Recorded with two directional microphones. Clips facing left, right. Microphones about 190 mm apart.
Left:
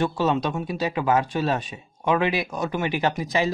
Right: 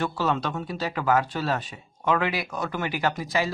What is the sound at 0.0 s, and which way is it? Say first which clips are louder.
Speech: left 4 dB; 20° left (ahead or behind).